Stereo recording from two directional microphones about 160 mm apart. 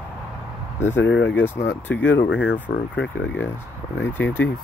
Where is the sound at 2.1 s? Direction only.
90° left.